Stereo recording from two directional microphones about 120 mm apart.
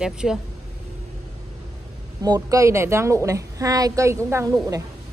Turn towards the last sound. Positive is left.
turn(degrees=-25)  # may be behind; listen again after turning